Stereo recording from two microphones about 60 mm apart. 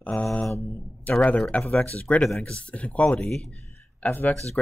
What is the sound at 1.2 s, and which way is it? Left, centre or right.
Speech, left.